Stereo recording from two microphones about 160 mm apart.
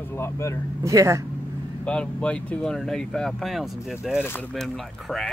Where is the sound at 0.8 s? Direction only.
20° right (ahead or behind).